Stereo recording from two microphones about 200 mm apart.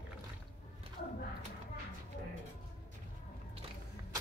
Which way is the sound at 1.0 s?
50° left (ahead or behind).